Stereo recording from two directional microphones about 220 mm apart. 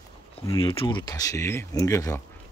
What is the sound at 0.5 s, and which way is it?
Speech, 25° left (ahead or behind).